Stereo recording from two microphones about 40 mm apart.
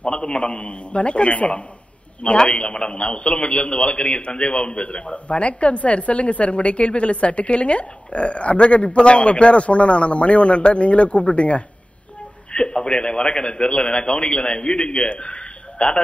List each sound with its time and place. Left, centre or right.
0.0 s a man's voice: left